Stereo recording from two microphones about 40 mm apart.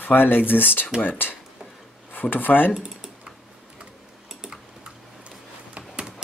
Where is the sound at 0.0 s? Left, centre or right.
Left.